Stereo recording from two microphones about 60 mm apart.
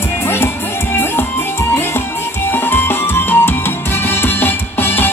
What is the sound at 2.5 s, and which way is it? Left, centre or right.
Music, left.